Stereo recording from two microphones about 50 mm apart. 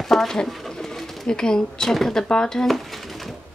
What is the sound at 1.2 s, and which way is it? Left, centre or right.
Speech, centre.